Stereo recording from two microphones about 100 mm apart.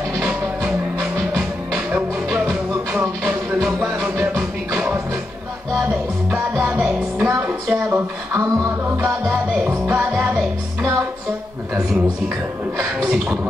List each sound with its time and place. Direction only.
1.1 s music: 30° right (ahead or behind)
2.9 s music: 10° right (ahead or behind)
6.3 s music: 25° right (ahead or behind)
6.8 s music: 10° right (ahead or behind)
7.2 s music: 20° right (ahead or behind)
10.8 s music: 30° right (ahead or behind)
13.0 s beatboxing: 15° right (ahead or behind)